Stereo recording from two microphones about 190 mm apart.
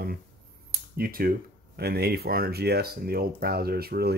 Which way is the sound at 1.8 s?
55° right (ahead or behind).